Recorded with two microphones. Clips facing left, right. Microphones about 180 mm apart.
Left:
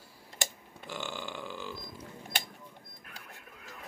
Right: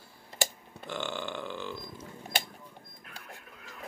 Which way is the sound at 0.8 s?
10° left (ahead or behind).